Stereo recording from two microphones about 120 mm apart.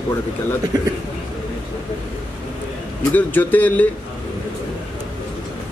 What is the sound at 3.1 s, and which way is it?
Speech, 15° left (ahead or behind).